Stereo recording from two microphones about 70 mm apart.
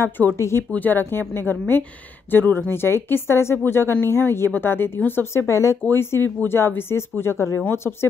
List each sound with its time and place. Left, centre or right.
0.0 s speech: left
0.4 s speech: left
0.7 s speech: left
5.5 s speech: left
5.9 s speech: left